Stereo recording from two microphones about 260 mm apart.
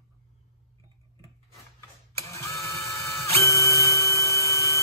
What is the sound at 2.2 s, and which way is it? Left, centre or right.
Printer, centre.